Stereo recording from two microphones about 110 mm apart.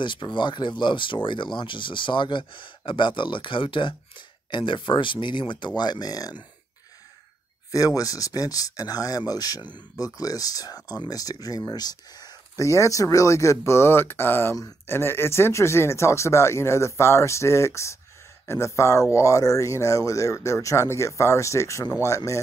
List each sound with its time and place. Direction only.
0.0 s speech: 45° left (ahead or behind)
7.7 s speech: 35° left (ahead or behind)